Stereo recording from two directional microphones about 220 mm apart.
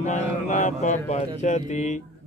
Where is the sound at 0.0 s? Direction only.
35° left (ahead or behind).